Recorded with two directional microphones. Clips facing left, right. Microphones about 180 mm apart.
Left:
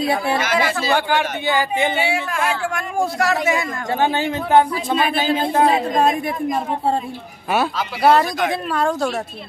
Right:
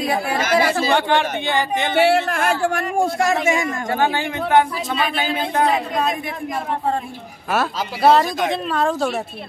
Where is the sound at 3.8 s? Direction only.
20° left (ahead or behind).